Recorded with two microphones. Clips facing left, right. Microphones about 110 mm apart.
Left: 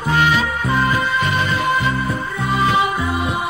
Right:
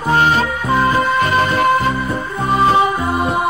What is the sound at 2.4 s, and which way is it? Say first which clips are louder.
Music: right 4 dB; 35° right (ahead or behind).